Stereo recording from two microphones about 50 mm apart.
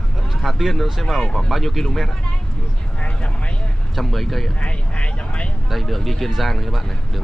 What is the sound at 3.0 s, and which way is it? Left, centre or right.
Vehicle, left.